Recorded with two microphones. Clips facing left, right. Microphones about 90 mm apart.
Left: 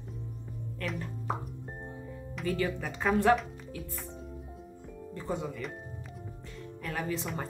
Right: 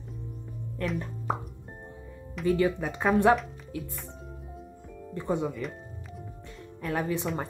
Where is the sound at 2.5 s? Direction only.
15° right (ahead or behind).